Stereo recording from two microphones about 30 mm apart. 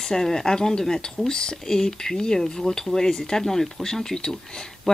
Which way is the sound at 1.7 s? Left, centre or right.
Centre.